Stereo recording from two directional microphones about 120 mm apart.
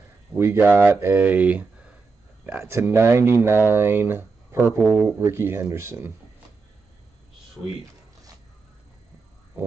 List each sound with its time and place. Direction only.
0.4 s speech: 20° right (ahead or behind)
2.4 s speech: 20° right (ahead or behind)